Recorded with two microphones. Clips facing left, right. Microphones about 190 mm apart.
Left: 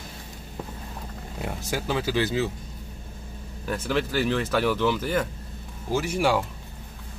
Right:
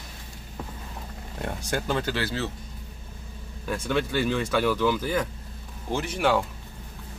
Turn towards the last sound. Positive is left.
turn(degrees=10)  # may be behind; listen again after turning